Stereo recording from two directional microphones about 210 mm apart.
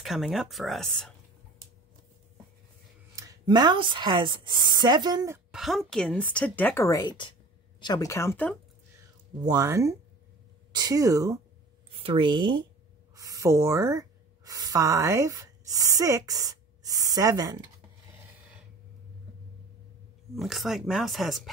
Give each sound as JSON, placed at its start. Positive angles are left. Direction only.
{"t": 0.0, "sound": "speech", "side_deg": 0}
{"t": 3.2, "sound": "speech", "side_deg": -20}
{"t": 5.5, "sound": "speech", "side_deg": 0}
{"t": 9.4, "sound": "speech", "side_deg": -15}
{"t": 11.9, "sound": "a woman's voice", "side_deg": -25}
{"t": 20.3, "sound": "speech", "side_deg": 0}